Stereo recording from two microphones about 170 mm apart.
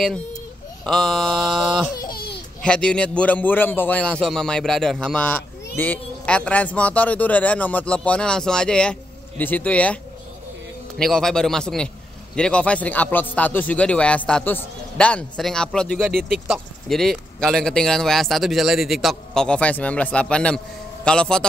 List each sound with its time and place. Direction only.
0.8 s speech: centre (ahead or behind)
2.0 s babbling: 65° left (ahead or behind)
2.6 s a man's voice: 5° left (ahead or behind)
11.0 s a man's voice: 5° left (ahead or behind)